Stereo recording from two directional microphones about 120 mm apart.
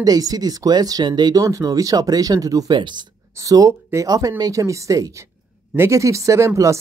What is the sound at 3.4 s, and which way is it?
Speech, 25° right (ahead or behind).